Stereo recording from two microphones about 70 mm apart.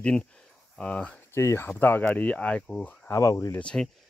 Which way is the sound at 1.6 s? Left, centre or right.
Left.